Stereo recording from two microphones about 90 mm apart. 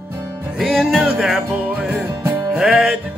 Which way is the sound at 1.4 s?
15° right (ahead or behind).